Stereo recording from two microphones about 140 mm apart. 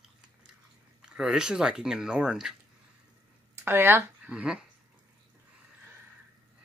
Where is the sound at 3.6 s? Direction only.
15° right (ahead or behind).